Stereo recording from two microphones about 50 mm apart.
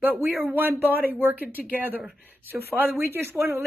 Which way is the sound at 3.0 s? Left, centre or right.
Right.